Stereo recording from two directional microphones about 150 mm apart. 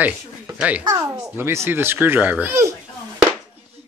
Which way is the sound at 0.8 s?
25° right (ahead or behind).